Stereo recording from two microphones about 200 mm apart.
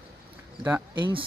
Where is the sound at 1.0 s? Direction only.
25° right (ahead or behind).